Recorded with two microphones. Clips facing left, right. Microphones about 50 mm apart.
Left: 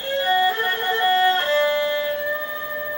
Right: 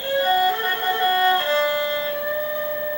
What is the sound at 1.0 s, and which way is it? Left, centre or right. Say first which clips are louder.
Violin: left 1 dB; centre.